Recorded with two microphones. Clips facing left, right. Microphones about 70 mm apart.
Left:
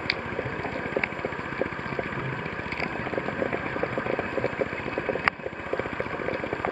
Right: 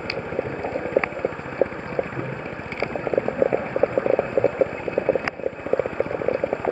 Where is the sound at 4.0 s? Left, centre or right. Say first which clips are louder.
Right 8 dB; centre.